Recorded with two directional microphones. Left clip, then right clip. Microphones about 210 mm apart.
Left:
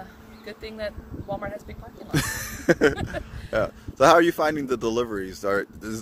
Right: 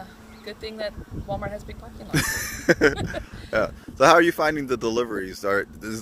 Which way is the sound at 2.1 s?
15° left (ahead or behind).